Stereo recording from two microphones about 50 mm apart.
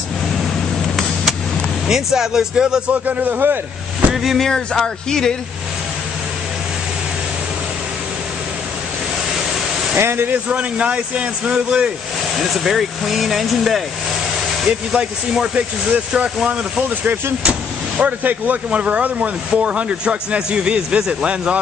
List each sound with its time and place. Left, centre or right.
1.9 s speech: centre
2.9 s a man's voice: right
4.1 s speech: centre
4.4 s speech: centre
9.9 s speech: right
10.5 s speech: right
12.4 s speech: centre
14.7 s speech: right
17.4 s vehicle: right
18.2 s speech: right